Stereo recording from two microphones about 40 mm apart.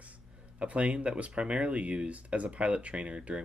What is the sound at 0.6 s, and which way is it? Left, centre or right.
Speech, right.